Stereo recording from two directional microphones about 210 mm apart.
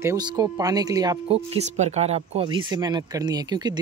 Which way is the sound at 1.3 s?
30° right (ahead or behind).